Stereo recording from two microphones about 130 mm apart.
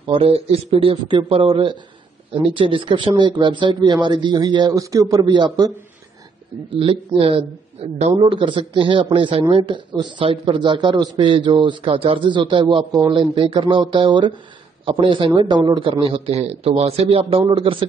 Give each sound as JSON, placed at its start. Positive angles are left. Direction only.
{"t": 0.0, "sound": "a man's voice", "side_deg": -45}
{"t": 6.7, "sound": "a man's voice", "side_deg": -45}